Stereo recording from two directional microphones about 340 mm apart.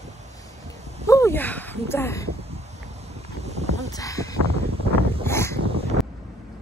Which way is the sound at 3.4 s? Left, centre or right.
Centre.